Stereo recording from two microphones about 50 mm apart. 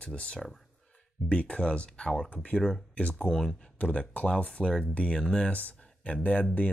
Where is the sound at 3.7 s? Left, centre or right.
Left.